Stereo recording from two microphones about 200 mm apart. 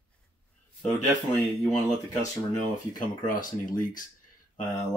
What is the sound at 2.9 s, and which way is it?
Speech, 40° left (ahead or behind).